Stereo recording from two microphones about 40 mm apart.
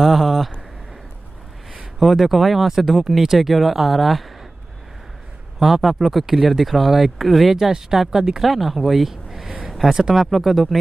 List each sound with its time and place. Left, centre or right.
0.0 s speech: centre
2.0 s speech: centre
5.8 s speech: centre
8.4 s speech: centre
9.8 s speech: right
10.1 s speech: centre